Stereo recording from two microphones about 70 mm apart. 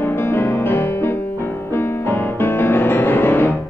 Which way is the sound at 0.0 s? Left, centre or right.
Left.